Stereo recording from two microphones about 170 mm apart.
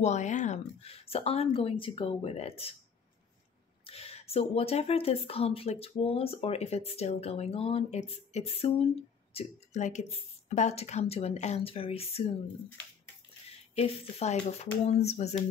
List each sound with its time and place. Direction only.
0.0 s speech: 45° left (ahead or behind)
3.8 s speech: 35° left (ahead or behind)
13.7 s speech: 40° left (ahead or behind)